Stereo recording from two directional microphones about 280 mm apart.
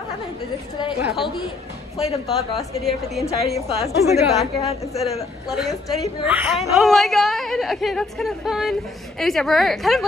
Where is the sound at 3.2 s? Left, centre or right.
Centre.